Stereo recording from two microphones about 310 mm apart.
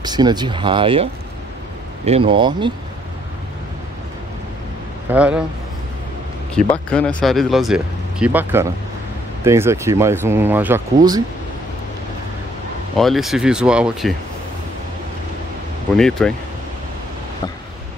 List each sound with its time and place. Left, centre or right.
0.0 s speech: centre
2.0 s speech: centre
5.1 s speech: centre
6.5 s speech: centre
12.9 s speech: centre
16.0 s speech: centre